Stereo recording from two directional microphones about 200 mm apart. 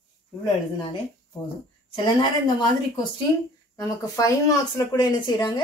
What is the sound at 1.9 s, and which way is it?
Speech, 25° left (ahead or behind).